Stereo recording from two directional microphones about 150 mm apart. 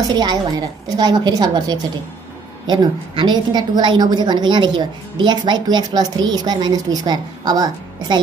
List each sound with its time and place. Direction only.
0.0 s a woman's voice: 30° right (ahead or behind)